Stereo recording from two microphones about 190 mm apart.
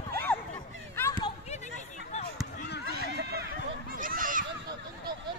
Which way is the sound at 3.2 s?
55° right (ahead or behind).